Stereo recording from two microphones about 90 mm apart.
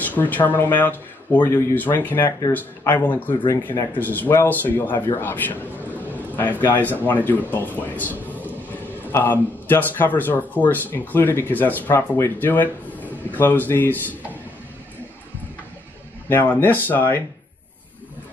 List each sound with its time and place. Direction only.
0.0 s a man's voice: 20° left (ahead or behind)
16.3 s a man's voice: 25° left (ahead or behind)